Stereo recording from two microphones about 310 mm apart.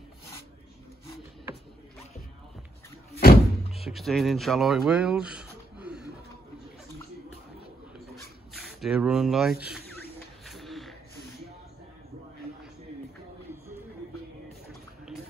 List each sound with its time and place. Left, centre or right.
3.2 s door: left
3.8 s speech: centre
8.5 s speech: centre
10.4 s a sound: centre